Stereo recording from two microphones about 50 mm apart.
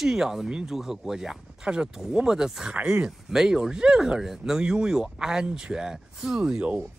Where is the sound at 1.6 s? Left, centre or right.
Centre.